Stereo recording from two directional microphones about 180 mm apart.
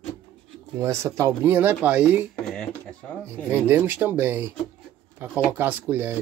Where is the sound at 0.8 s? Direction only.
15° right (ahead or behind).